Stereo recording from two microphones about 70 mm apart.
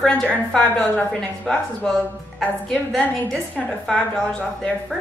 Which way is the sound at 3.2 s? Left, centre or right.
Centre.